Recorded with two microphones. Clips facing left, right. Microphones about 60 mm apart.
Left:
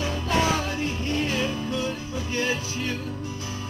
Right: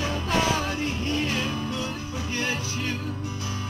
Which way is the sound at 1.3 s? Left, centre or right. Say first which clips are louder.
Left 2 dB; left.